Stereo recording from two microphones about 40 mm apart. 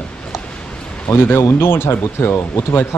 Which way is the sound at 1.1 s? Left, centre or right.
Left.